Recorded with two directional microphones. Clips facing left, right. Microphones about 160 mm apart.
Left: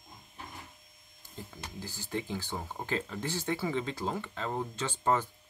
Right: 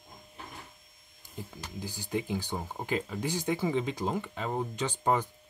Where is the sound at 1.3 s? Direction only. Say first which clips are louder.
Right 2 dB; 15° right (ahead or behind).